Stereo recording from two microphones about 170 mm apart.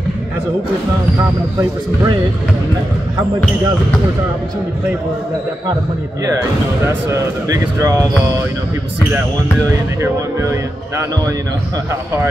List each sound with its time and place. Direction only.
6.9 s speech: 20° right (ahead or behind)
10.0 s speech: 15° right (ahead or behind)